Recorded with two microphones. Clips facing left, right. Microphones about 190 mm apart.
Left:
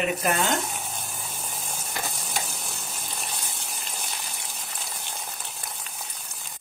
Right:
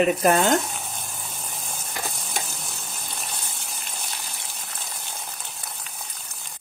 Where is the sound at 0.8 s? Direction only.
Centre (ahead or behind).